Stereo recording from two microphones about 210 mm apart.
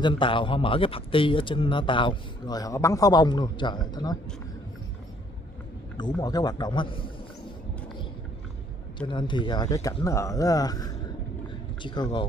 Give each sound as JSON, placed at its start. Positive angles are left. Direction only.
{"t": 0.0, "sound": "speech", "side_deg": 25}
{"t": 5.9, "sound": "speech", "side_deg": 20}
{"t": 8.9, "sound": "speech", "side_deg": 20}